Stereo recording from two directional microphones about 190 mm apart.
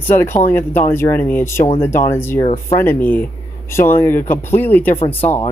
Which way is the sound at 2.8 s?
10° left (ahead or behind).